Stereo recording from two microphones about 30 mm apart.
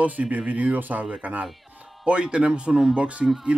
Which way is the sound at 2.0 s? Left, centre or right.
Right.